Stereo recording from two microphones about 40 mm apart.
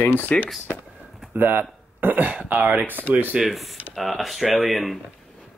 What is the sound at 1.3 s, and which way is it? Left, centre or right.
Speech, right.